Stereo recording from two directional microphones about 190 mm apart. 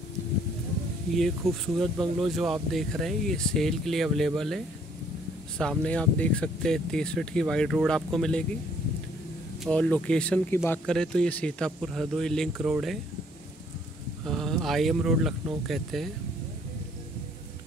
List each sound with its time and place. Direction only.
1.1 s speech: centre (ahead or behind)
9.6 s speech: 5° left (ahead or behind)
14.2 s speech: centre (ahead or behind)